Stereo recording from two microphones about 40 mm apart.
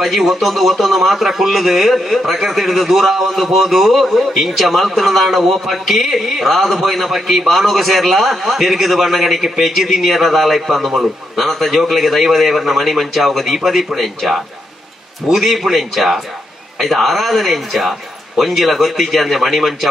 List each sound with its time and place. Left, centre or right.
0.0 s a man's voice: centre